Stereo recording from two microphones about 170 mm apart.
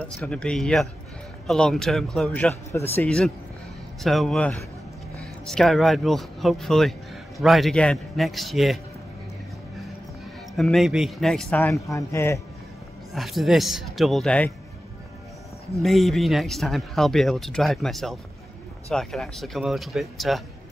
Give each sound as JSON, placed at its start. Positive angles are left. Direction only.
{"t": 0.0, "sound": "speech", "side_deg": 5}
{"t": 10.5, "sound": "speech", "side_deg": 0}
{"t": 13.1, "sound": "speech", "side_deg": 0}
{"t": 15.8, "sound": "speech", "side_deg": 0}